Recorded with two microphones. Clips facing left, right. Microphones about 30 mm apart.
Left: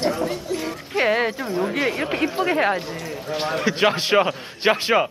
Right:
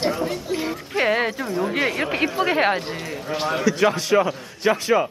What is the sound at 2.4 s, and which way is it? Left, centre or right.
Speech, right.